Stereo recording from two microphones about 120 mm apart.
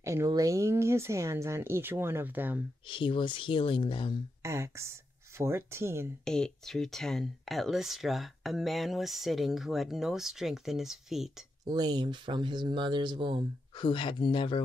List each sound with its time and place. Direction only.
0.0 s speech: 25° right (ahead or behind)
2.9 s speech: 45° left (ahead or behind)
4.4 s speech: 25° right (ahead or behind)
6.2 s speech: 5° left (ahead or behind)
11.6 s speech: 35° right (ahead or behind)
13.7 s speech: 45° left (ahead or behind)